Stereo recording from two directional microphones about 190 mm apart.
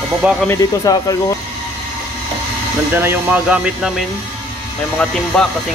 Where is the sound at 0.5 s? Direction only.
20° left (ahead or behind).